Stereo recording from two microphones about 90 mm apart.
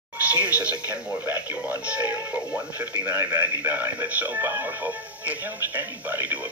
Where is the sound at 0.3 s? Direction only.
15° right (ahead or behind).